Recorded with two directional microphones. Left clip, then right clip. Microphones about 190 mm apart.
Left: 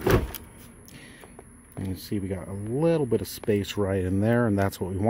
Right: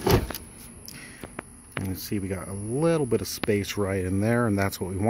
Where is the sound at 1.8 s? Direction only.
10° left (ahead or behind).